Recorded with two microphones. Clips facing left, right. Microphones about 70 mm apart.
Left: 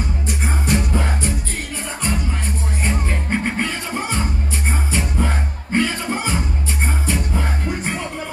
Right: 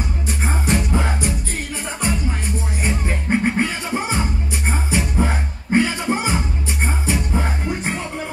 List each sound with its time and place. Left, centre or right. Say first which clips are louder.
0.7 s music: even; centre
2.8 s music: left 1 dB; centre